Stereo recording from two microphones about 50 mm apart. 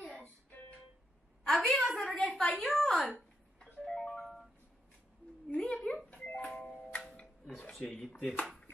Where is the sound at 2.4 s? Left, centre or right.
Left.